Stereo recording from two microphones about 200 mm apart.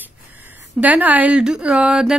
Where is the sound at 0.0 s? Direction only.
10° right (ahead or behind).